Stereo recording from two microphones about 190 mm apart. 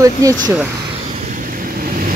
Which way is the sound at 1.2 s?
45° right (ahead or behind).